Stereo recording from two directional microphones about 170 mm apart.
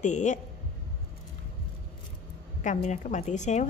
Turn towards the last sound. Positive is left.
turn(degrees=45)  # may be behind; listen again after turning